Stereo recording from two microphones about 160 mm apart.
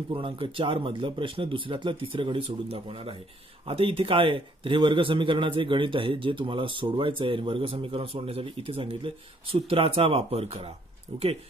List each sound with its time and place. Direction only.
0.1 s a man's voice: 35° right (ahead or behind)